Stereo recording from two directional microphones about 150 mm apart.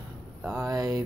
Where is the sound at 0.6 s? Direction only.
25° right (ahead or behind).